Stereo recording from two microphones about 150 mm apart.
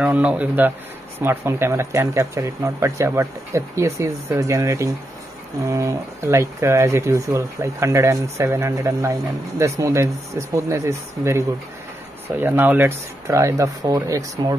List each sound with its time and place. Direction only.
0.0 s speech: 10° right (ahead or behind)